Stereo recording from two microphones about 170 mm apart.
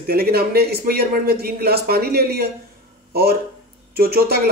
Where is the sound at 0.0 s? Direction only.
65° right (ahead or behind).